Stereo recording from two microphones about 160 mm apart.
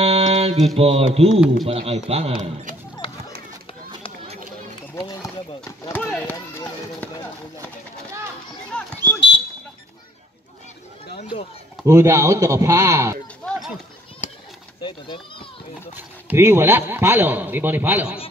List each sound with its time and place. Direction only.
0.0 s mantra: 40° right (ahead or behind)
0.7 s speech: 40° right (ahead or behind)
4.9 s run: 20° left (ahead or behind)
8.7 s a sound: 10° left (ahead or behind)
11.8 s speech: 15° right (ahead or behind)
14.2 s a sound: 50° left (ahead or behind)
14.8 s speech: 30° left (ahead or behind)
16.0 s speech: 15° right (ahead or behind)